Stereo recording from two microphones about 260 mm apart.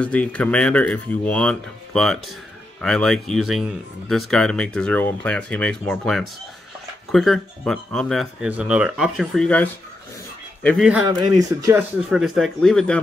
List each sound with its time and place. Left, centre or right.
0.0 s speech: centre
11.1 s speech: centre
12.1 s speech: centre